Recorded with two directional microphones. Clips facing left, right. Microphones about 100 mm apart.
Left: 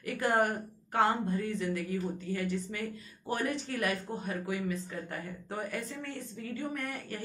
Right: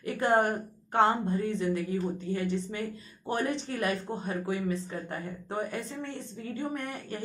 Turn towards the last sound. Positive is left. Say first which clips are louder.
# right 2 dB
turn(degrees=-25)  # may be behind; listen again after turning